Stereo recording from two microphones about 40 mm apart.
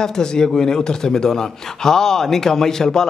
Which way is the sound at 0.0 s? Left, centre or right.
Centre.